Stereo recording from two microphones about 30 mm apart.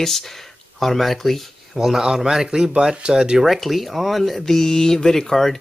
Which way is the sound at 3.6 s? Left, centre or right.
Centre.